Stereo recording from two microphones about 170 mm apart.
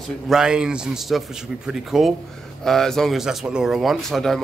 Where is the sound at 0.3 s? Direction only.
5° right (ahead or behind).